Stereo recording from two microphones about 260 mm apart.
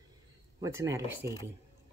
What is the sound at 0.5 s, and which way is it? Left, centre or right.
Speech, centre.